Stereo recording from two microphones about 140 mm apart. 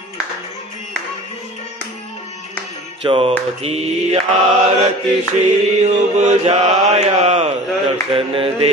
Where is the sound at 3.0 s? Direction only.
40° right (ahead or behind).